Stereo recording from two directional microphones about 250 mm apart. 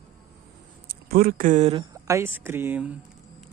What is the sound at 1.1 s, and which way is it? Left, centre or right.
Speech, right.